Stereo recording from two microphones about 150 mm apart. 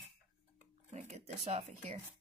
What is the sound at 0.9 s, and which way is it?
Speech, 50° right (ahead or behind).